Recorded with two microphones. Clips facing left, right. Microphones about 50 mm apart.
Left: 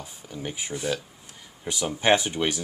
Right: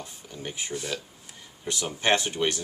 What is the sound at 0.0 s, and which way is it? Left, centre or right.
Speech, centre.